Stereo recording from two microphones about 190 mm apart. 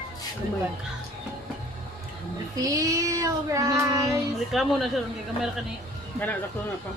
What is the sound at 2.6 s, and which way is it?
Child singing, 20° right (ahead or behind).